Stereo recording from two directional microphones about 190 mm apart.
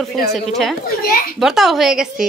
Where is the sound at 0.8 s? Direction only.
50° left (ahead or behind).